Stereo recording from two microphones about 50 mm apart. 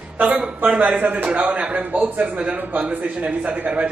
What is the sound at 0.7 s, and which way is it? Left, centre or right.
A man's voice, right.